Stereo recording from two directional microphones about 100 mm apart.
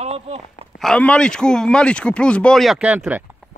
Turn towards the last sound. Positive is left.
turn(degrees=-15)  # may be behind; listen again after turning